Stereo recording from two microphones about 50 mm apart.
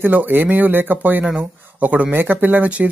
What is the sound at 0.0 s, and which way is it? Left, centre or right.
Speech, right.